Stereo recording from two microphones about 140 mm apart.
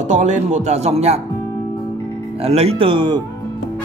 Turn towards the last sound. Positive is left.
turn(degrees=-35)  # may be behind; listen again after turning